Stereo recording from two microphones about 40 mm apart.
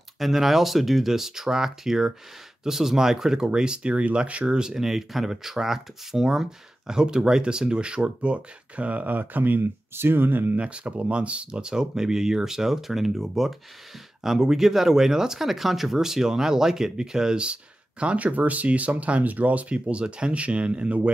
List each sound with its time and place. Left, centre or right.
0.2 s speech: centre; by 4.6 s right
4.6 s speech: centre; by 9.6 s right
9.6 s speech: right
10.6 s speech: right
11.7 s speech: centre; by 21.1 s right